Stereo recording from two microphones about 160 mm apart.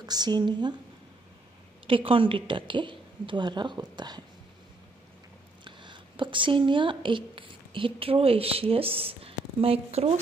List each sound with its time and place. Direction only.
0.0 s speech: 25° right (ahead or behind)
1.9 s a woman's voice: 35° right (ahead or behind)
5.6 s speech: 30° right (ahead or behind)